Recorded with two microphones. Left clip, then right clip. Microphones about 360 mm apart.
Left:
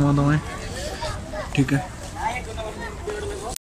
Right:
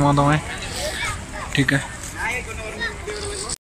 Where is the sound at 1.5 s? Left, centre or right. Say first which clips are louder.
Right 4 dB; centre.